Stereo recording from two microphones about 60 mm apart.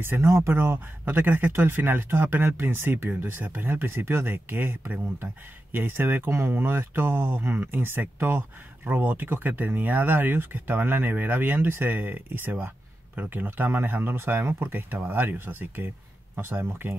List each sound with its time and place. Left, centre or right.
0.0 s speech: right